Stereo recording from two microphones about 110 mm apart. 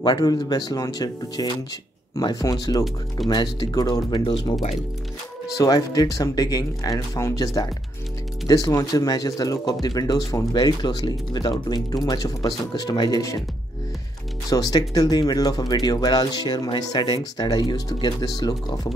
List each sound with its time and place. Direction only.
0.0 s speech: 35° left (ahead or behind)
14.5 s speech: 35° left (ahead or behind)